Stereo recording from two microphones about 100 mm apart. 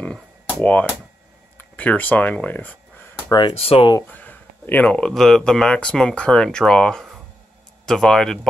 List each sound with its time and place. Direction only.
0.0 s a sound: 10° left (ahead or behind)
1.6 s speech: 15° left (ahead or behind)
3.3 s speech: 45° left (ahead or behind)
3.5 s speech: 75° left (ahead or behind)
4.1 s speech: 20° left (ahead or behind)